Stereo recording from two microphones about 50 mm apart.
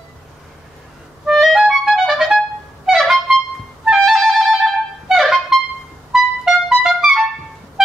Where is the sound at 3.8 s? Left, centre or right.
Centre.